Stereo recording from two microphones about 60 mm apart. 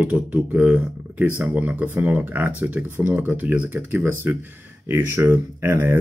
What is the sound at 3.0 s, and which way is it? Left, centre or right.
Speech, right.